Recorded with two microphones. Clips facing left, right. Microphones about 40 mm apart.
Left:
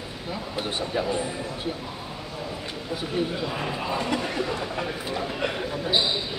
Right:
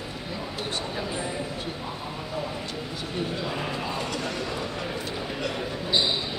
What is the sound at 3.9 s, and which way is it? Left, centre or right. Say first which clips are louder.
Speech: left 3 dB; centre.